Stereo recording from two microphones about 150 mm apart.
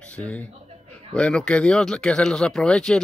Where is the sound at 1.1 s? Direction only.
5° left (ahead or behind).